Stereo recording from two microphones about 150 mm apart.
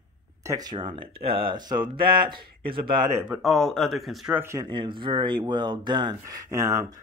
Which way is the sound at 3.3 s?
Centre (ahead or behind).